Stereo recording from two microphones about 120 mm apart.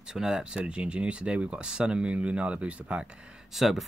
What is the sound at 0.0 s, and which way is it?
Speech, 5° right (ahead or behind).